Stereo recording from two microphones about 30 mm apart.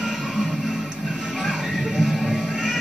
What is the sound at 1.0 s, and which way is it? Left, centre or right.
Music, right.